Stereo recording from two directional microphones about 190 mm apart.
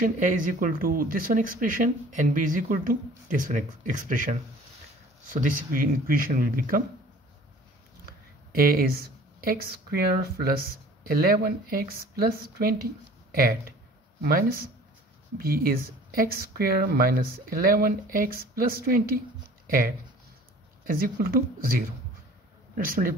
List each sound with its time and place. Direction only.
0.0 s speech: 45° right (ahead or behind)
8.0 s speech: 50° right (ahead or behind)
20.8 s speech: 50° right (ahead or behind)